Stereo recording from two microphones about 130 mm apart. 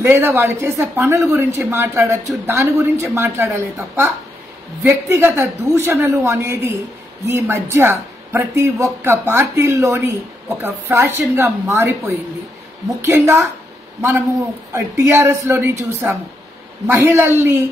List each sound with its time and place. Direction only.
0.0 s a man's voice: 15° right (ahead or behind)
14.7 s a man's voice: 20° right (ahead or behind)